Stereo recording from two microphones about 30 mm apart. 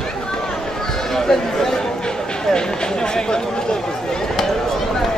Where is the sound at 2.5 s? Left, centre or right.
Left.